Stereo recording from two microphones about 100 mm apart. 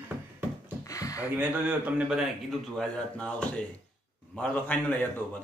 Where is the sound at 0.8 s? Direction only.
35° left (ahead or behind).